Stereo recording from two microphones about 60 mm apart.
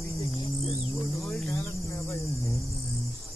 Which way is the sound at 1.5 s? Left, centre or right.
Left.